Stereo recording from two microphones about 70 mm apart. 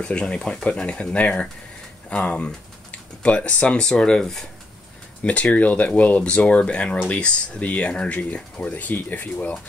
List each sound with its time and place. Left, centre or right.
0.0 s speech: centre